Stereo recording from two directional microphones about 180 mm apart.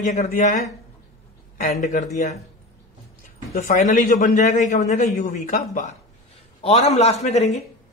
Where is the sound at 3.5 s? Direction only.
45° left (ahead or behind).